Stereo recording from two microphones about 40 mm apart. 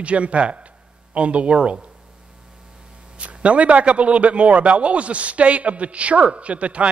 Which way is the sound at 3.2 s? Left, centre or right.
Right.